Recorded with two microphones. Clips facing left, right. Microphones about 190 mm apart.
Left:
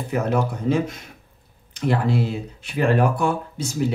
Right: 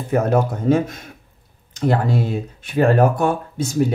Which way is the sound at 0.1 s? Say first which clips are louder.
Right 5 dB; 50° right (ahead or behind).